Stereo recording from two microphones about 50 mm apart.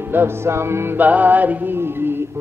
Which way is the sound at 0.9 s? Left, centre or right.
Right.